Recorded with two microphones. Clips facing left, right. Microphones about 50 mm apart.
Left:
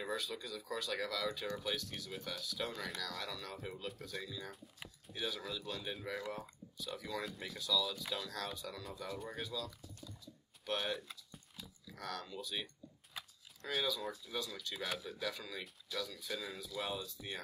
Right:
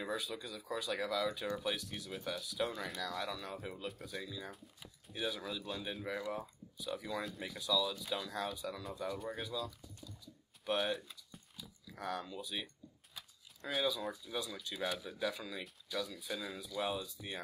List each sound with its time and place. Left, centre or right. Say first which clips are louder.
0.0 s speech: right 1 dB; centre
2.0 s speech: right 2 dB; centre
3.6 s speech: right 1 dB; centre
7.5 s speech: right 2 dB; centre
9.0 s speech: right 3 dB; centre
10.6 s a sound: right 4 dB; centre
11.9 s speech: right 3 dB; centre
13.7 s speech: right 2 dB; centre